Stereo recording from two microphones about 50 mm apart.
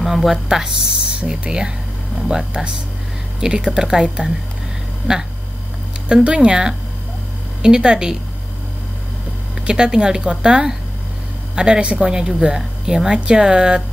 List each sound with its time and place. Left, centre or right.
0.0 s speech: centre
1.2 s speech: centre
9.7 s speech: centre